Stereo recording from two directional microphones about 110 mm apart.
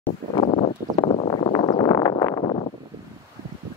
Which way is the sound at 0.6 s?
60° left (ahead or behind).